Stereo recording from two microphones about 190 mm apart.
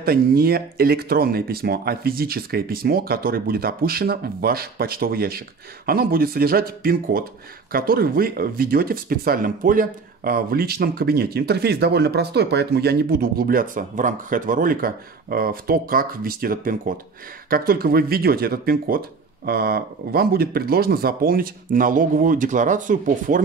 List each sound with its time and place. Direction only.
0.0 s speech: 55° right (ahead or behind)